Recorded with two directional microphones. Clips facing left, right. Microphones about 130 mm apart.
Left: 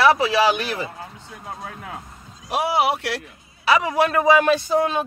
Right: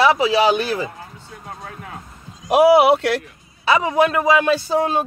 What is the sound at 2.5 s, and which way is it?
Speech, 65° right (ahead or behind).